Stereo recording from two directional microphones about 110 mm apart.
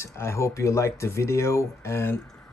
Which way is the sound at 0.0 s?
25° left (ahead or behind).